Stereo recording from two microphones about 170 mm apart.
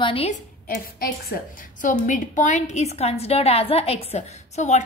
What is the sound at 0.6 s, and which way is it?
A woman's voice, 60° left (ahead or behind).